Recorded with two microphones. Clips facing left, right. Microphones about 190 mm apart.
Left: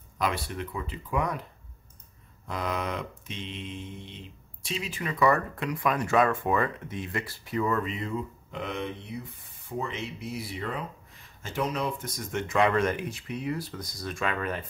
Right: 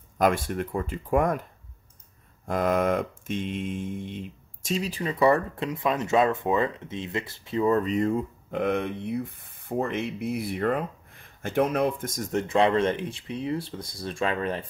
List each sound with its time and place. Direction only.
0.2 s mantra: 50° right (ahead or behind)
2.4 s mantra: 50° right (ahead or behind); by 14.7 s 30° right (ahead or behind)